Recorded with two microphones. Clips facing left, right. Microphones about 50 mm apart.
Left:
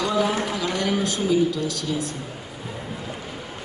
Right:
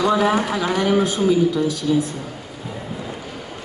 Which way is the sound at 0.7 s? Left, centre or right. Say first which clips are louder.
Right 8 dB; centre.